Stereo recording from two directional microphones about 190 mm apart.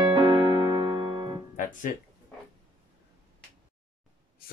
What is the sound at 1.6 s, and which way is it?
Music, 45° left (ahead or behind).